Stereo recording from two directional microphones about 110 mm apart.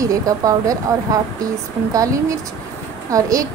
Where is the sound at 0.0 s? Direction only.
30° right (ahead or behind).